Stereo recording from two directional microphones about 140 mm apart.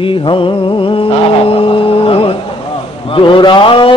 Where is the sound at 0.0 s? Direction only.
35° left (ahead or behind).